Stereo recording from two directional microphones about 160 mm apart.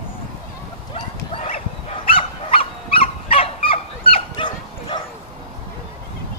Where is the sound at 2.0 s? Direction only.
35° left (ahead or behind).